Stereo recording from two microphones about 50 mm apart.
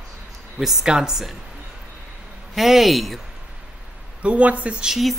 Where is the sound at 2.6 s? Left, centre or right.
Centre.